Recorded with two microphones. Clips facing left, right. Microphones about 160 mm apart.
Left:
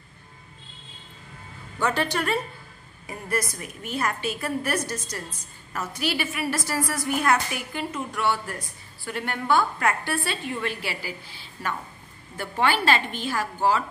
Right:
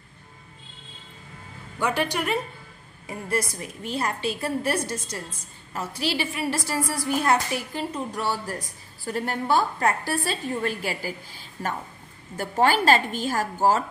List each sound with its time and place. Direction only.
1.8 s speech: 10° right (ahead or behind)
3.1 s a woman's voice: 30° right (ahead or behind)